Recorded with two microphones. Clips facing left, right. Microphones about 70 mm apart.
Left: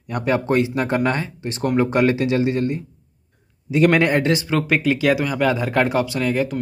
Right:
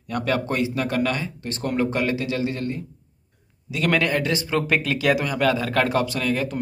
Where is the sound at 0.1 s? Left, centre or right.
Left.